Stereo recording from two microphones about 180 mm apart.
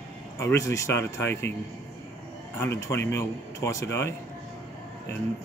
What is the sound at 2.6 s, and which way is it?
Speech, 15° left (ahead or behind).